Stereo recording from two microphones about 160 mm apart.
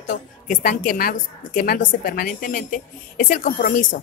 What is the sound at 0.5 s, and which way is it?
A woman's voice, 55° left (ahead or behind).